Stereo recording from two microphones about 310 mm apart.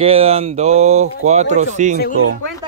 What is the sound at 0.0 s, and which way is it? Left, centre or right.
Mantra, centre.